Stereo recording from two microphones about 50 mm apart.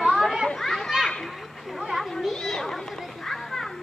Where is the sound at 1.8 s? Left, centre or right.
Centre.